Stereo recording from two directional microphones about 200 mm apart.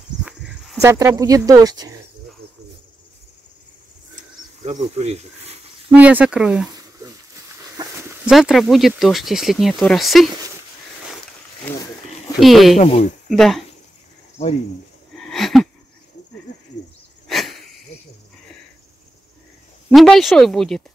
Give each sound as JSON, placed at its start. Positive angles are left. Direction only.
{"t": 0.8, "sound": "speech", "side_deg": -15}
{"t": 4.6, "sound": "speech", "side_deg": -35}
{"t": 5.9, "sound": "speech", "side_deg": -5}
{"t": 6.7, "sound": "a sound", "side_deg": -15}
{"t": 8.3, "sound": "speech", "side_deg": 0}
{"t": 11.7, "sound": "a sound", "side_deg": 10}
{"t": 12.4, "sound": "speech", "side_deg": 0}
{"t": 12.7, "sound": "speech", "side_deg": 30}
{"t": 13.3, "sound": "speech", "side_deg": 0}
{"t": 15.1, "sound": "a sound", "side_deg": 0}
{"t": 17.3, "sound": "a sound", "side_deg": 0}
{"t": 19.9, "sound": "speech", "side_deg": 0}